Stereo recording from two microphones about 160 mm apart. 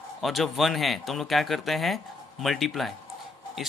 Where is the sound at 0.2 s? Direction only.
Centre (ahead or behind).